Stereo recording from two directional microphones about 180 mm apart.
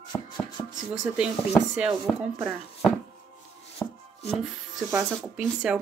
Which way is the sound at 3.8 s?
5° left (ahead or behind).